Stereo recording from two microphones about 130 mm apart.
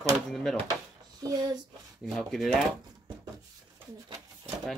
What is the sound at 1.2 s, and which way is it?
Speech, 30° right (ahead or behind).